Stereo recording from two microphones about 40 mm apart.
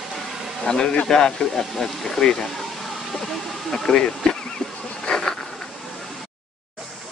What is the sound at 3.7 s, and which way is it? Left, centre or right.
Speech, centre.